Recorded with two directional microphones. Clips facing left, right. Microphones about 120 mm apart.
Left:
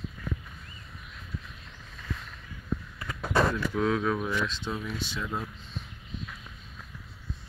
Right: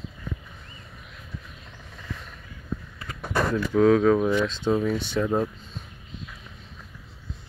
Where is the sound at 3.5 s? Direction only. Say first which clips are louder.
Right 9 dB; 35° right (ahead or behind).